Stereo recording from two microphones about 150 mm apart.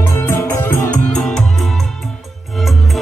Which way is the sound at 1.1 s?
5° left (ahead or behind).